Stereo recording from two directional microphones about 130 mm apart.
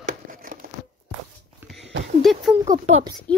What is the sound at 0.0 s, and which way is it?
Crumpling, 90° right.